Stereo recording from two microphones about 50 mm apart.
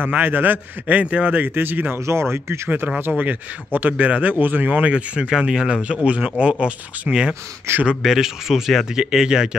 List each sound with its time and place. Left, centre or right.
0.0 s a man's voice: right
2.0 s speech: right
3.1 s speech: right
7.7 s speech: right
8.0 s speech: centre